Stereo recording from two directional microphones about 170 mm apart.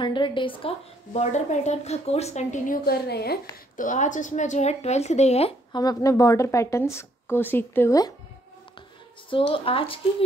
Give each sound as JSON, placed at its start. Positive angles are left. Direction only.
{"t": 0.0, "sound": "a woman's voice", "side_deg": 30}
{"t": 3.7, "sound": "a woman's voice", "side_deg": 50}
{"t": 5.7, "sound": "speech", "side_deg": 20}
{"t": 9.5, "sound": "a woman's voice", "side_deg": 30}